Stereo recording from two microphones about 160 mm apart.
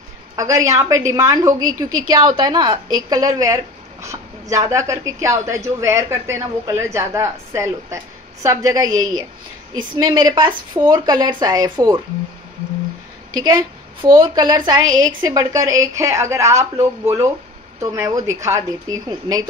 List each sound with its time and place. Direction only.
0.4 s a woman's voice: 20° right (ahead or behind)
14.1 s a woman's voice: 30° right (ahead or behind)